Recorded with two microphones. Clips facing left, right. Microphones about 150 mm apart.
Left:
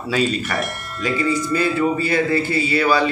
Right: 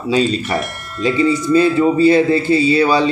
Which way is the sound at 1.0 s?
20° right (ahead or behind).